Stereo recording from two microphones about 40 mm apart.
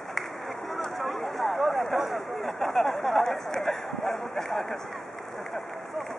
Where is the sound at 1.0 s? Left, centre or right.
Centre.